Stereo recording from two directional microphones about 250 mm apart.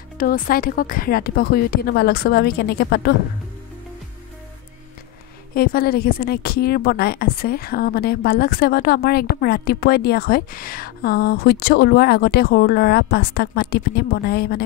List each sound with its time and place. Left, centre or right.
0.2 s a woman's voice: left
5.5 s a woman's voice: left